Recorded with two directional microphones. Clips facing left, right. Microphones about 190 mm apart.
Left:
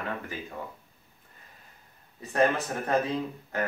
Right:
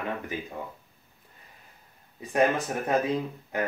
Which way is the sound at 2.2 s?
15° right (ahead or behind).